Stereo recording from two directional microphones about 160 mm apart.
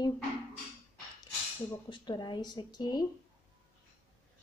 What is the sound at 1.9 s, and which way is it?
A woman's voice, 30° left (ahead or behind).